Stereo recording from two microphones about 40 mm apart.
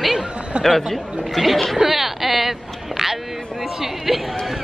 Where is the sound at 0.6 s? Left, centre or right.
Centre.